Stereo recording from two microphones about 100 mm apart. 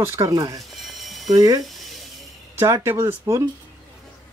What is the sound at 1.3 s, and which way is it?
Speech, 40° right (ahead or behind).